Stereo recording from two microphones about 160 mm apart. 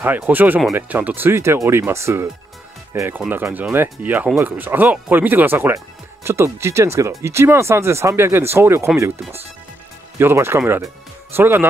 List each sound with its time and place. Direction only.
0.0 s speech: 10° right (ahead or behind)
10.1 s speech: 15° right (ahead or behind)